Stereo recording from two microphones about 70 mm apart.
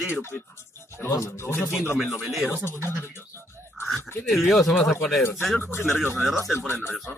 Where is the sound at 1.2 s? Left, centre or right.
Left.